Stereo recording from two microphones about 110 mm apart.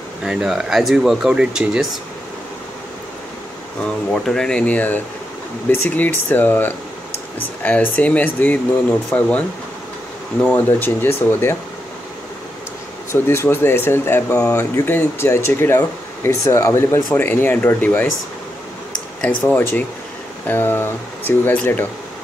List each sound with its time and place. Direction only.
0.2 s speech: 5° right (ahead or behind)
3.8 s speech: 5° left (ahead or behind)
10.4 s speech: 15° left (ahead or behind)
13.1 s speech: 20° left (ahead or behind)
14.5 s speech: 15° left (ahead or behind)
19.2 s speech: 15° left (ahead or behind)